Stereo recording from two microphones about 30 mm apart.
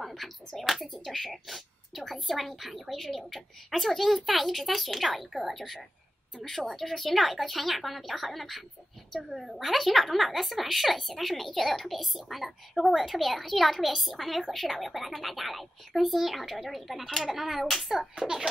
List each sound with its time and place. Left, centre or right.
0.0 s a sound: centre
0.6 s speech: centre
18.1 s a child's voice: right